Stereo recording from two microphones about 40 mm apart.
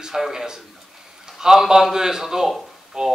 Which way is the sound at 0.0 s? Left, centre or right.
Centre.